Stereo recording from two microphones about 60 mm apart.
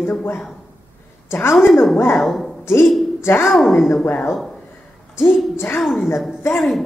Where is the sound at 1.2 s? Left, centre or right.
Left.